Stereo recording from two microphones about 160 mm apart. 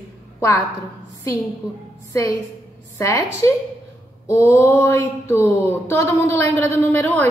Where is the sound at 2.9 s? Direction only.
20° left (ahead or behind).